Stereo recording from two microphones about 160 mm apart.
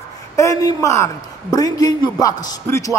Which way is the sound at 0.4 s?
20° left (ahead or behind).